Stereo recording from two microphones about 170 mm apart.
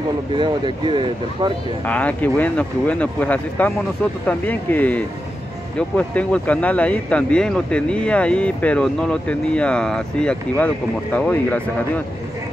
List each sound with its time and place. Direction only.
0.4 s speech: 30° right (ahead or behind)
1.9 s speech: 10° left (ahead or behind)